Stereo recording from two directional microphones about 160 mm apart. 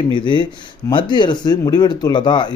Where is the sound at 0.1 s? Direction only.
30° left (ahead or behind).